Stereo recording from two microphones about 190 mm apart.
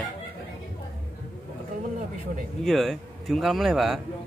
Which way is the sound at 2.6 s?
Centre (ahead or behind).